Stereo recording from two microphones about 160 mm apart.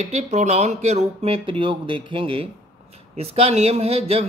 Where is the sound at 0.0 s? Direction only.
45° right (ahead or behind).